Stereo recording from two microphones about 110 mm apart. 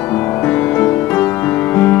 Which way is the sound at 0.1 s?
15° left (ahead or behind).